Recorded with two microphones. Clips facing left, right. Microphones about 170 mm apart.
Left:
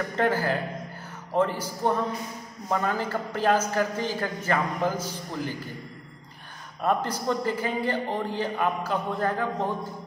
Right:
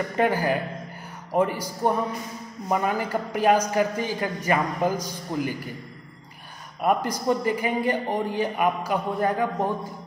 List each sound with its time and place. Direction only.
0.1 s a man's voice: 15° right (ahead or behind)
6.8 s a man's voice: 10° right (ahead or behind)